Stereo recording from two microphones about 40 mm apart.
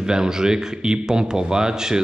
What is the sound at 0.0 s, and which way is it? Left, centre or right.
Speech, centre.